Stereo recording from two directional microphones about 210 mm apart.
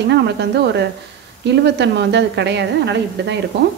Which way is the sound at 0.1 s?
55° right (ahead or behind).